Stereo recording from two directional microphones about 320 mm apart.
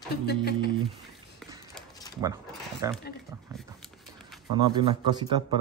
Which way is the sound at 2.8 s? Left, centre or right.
Centre.